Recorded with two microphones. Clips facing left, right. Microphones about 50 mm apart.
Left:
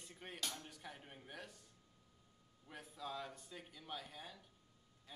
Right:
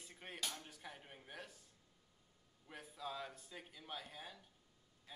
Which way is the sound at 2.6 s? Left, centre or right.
Centre.